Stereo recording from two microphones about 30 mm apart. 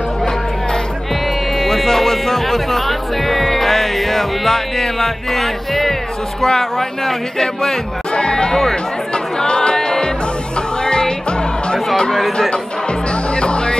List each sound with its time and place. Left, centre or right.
1.7 s music: centre
6.4 s speech: centre
8.1 s music: left
9.1 s chatter: left
9.8 s music: left
12.1 s speech: centre
13.1 s music: left